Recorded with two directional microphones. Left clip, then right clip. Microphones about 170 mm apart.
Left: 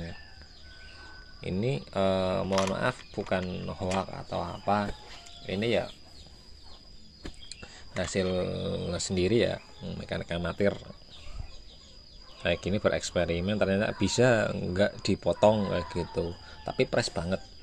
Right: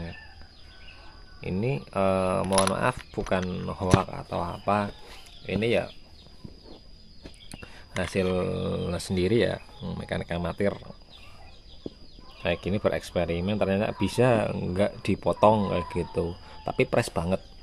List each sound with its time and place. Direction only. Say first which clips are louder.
1.4 s speech: right 2 dB; 5° right (ahead or behind)
8.0 s speech: right 2 dB; 20° right (ahead or behind)
12.4 s speech: right 1 dB; 5° right (ahead or behind); by 17.4 s 20° right (ahead or behind)